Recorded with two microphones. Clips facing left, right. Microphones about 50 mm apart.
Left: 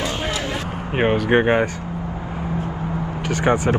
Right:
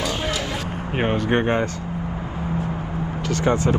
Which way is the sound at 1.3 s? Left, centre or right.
Left.